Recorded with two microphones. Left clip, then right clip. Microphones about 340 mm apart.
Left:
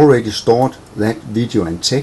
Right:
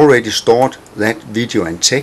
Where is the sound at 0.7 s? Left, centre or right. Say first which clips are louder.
Right 3 dB; centre.